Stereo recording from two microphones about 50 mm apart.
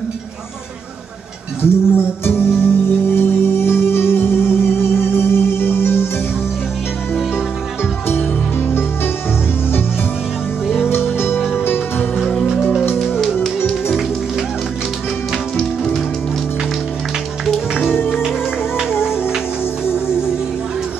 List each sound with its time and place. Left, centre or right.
1.6 s music: left
8.1 s music: left
10.9 s music: left
13.0 s music: centre
15.5 s music: centre
17.8 s music: left
19.0 s music: centre